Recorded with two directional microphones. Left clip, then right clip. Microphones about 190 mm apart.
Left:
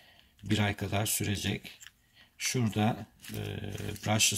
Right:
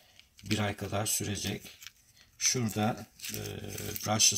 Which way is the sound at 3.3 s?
15° left (ahead or behind).